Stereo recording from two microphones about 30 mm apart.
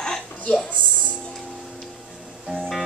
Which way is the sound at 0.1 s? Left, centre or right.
Centre.